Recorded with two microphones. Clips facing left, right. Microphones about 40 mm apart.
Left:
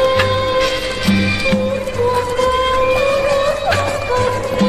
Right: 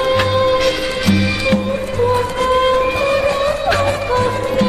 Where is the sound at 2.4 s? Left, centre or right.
Right.